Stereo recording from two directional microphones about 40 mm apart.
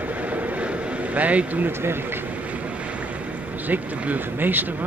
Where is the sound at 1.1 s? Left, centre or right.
Right.